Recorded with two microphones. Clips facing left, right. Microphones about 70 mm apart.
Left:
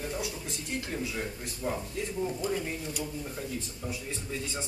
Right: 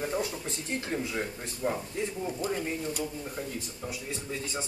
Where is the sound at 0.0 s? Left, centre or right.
Right.